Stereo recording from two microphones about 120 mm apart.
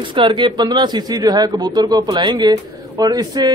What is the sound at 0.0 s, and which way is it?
Speech, 45° right (ahead or behind).